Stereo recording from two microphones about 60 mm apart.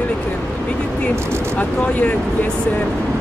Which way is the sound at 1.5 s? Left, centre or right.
Left.